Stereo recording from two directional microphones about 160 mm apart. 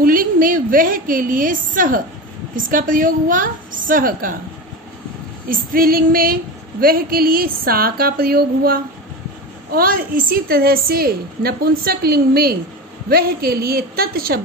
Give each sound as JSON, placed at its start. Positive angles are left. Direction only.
{"t": 0.0, "sound": "female singing", "side_deg": -60}
{"t": 5.5, "sound": "female singing", "side_deg": -60}
{"t": 9.7, "sound": "a woman's voice", "side_deg": -65}